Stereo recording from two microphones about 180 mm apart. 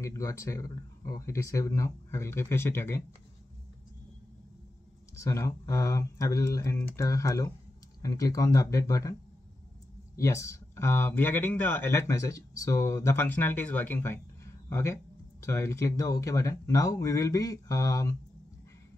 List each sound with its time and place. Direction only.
0.0 s speech: 15° left (ahead or behind)
5.1 s speech: 15° left (ahead or behind)
10.1 s speech: 15° left (ahead or behind)